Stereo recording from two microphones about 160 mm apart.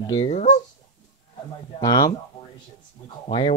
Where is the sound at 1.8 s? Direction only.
20° left (ahead or behind).